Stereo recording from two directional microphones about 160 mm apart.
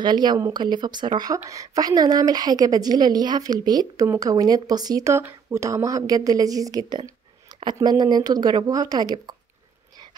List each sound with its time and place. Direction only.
0.0 s speech: 25° right (ahead or behind)